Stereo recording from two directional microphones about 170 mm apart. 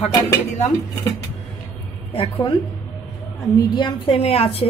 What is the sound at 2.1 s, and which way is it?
Speech, 35° left (ahead or behind).